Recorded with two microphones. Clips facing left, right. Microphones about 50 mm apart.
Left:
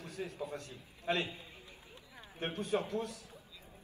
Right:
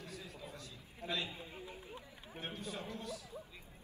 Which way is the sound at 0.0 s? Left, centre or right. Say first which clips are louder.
Left 7 dB; left.